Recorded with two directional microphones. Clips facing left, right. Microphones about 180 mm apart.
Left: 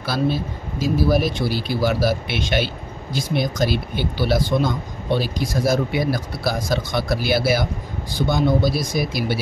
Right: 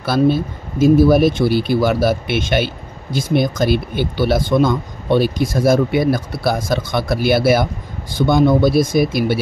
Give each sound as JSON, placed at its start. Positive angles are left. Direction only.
{"t": 0.1, "sound": "speech", "side_deg": -50}